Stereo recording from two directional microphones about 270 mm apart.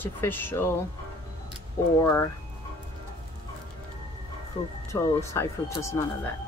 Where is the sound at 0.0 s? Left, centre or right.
Centre.